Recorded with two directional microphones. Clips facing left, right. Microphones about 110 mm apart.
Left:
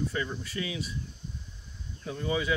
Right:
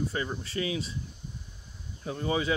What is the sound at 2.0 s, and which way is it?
Speech, 30° right (ahead or behind).